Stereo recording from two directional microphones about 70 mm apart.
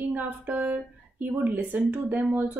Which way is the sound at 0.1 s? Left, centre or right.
Right.